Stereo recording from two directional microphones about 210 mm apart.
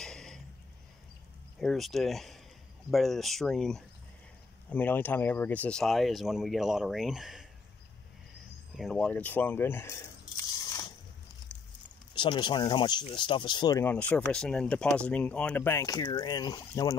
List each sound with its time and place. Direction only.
0.0 s a sound: 5° left (ahead or behind)
1.6 s speech: centre (ahead or behind)
8.7 s speech: centre (ahead or behind); by 10.9 s 20° left (ahead or behind)
12.1 s speech: 20° left (ahead or behind)